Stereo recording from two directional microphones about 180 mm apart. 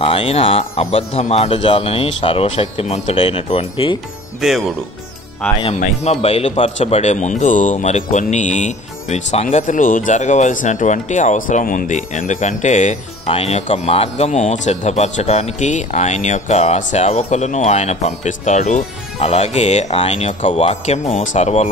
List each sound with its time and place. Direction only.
0.0 s speech: 30° left (ahead or behind)
4.4 s speech: centre (ahead or behind)
6.2 s speech: 35° left (ahead or behind)